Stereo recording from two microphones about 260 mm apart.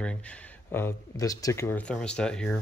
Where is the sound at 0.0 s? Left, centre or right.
Centre.